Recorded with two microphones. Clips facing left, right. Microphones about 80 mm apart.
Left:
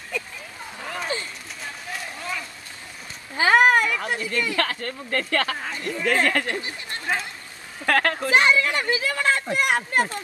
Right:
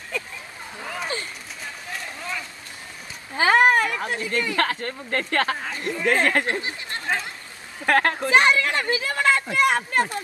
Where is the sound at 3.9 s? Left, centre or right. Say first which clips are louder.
Even; right.